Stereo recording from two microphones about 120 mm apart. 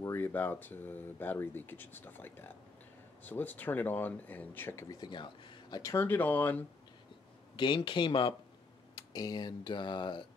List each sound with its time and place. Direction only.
0.0 s speech: 20° left (ahead or behind)
4.8 s speech: 40° left (ahead or behind)
5.8 s speech: 25° left (ahead or behind)
6.0 s speech: 15° left (ahead or behind)
7.5 s speech: 40° left (ahead or behind)